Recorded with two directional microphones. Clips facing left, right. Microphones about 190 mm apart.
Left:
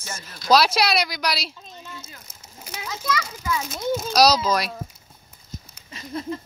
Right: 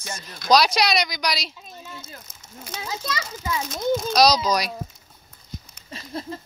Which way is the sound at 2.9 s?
25° right (ahead or behind).